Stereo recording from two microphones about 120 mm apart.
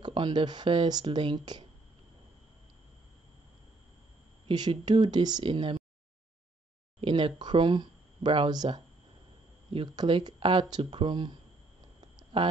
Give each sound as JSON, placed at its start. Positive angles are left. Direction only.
{"t": 0.0, "sound": "speech", "side_deg": -40}
{"t": 4.5, "sound": "speech", "side_deg": -40}
{"t": 7.0, "sound": "speech", "side_deg": -45}
{"t": 12.2, "sound": "a sound", "side_deg": -45}